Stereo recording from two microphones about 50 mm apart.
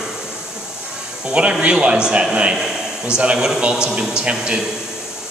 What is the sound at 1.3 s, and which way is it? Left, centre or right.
Speech, centre.